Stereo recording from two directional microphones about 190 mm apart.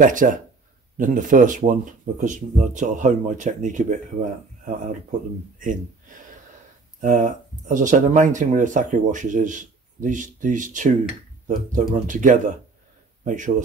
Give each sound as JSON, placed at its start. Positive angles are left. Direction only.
{"t": 0.0, "sound": "speech", "side_deg": -45}